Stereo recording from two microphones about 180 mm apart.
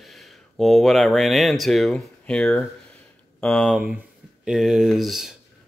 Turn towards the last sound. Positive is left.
turn(degrees=0)  # may be behind; listen again after turning